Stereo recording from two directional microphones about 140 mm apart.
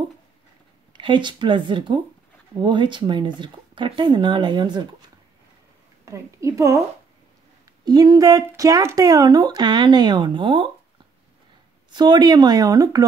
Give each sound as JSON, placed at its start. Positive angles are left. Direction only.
{"t": 0.9, "sound": "speech", "side_deg": -35}
{"t": 6.0, "sound": "a woman's voice", "side_deg": -20}
{"t": 7.8, "sound": "speech", "side_deg": -30}
{"t": 11.9, "sound": "speech", "side_deg": -30}